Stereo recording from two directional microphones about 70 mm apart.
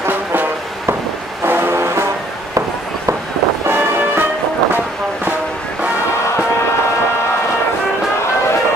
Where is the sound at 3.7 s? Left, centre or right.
Right.